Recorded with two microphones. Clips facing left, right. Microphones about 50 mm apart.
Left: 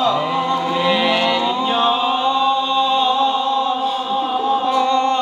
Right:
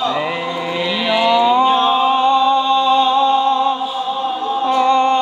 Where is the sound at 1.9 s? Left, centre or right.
Centre.